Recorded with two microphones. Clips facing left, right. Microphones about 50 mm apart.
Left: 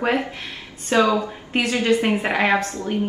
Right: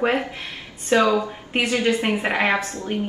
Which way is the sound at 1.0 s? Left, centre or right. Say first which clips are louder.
Left 2 dB; right.